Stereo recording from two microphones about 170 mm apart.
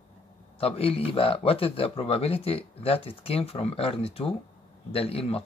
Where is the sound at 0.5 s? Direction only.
35° left (ahead or behind).